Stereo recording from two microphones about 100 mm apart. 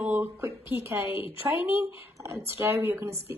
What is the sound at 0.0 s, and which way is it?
A woman's voice, 20° right (ahead or behind).